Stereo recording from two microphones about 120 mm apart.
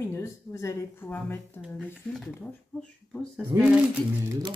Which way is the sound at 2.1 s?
5° left (ahead or behind).